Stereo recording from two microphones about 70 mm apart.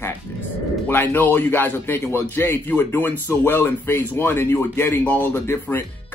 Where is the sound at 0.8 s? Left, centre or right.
Left.